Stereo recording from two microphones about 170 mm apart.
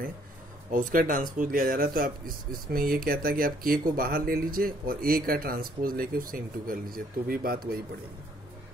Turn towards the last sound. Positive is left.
turn(degrees=-60)  # may be behind; listen again after turning